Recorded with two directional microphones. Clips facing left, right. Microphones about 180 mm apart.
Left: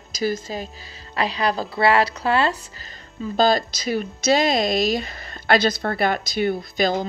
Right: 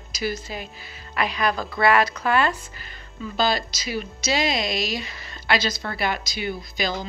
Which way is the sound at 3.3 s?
45° left (ahead or behind).